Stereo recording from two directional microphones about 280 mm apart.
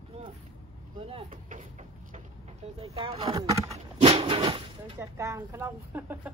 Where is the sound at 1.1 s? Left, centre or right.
Right.